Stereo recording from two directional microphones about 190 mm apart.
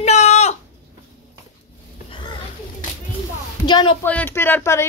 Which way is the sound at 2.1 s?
25° left (ahead or behind).